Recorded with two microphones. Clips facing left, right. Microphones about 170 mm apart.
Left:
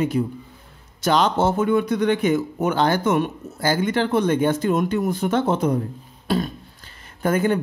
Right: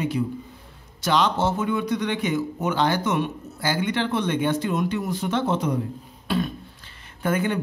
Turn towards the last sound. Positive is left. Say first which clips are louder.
# left 4 dB
turn(degrees=40)  # may be behind; listen again after turning